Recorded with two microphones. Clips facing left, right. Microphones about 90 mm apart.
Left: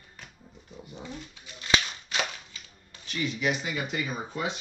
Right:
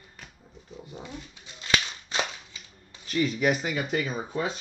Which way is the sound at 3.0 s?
40° right (ahead or behind).